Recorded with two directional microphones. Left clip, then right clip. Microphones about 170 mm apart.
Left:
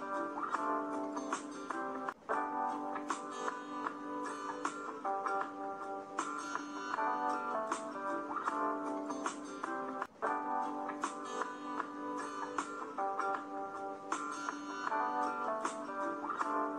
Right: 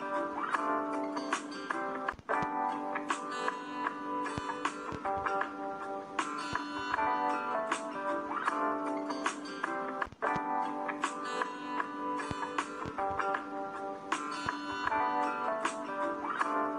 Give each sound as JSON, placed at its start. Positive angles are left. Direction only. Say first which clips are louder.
{"t": 0.1, "sound": "music", "louder": "right 4 dB", "side_deg": 20}
{"t": 5.0, "sound": "music", "louder": "right 3 dB", "side_deg": 25}
{"t": 9.9, "sound": "music", "louder": "right 4 dB", "side_deg": 20}
{"t": 14.9, "sound": "music", "louder": "right 4 dB", "side_deg": 25}